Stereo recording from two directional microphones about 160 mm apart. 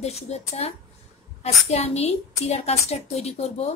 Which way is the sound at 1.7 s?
40° left (ahead or behind).